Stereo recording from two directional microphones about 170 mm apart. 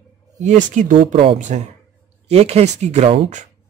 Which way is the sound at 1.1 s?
35° right (ahead or behind).